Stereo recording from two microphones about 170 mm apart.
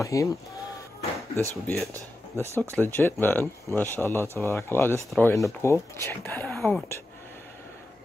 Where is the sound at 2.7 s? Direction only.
10° left (ahead or behind).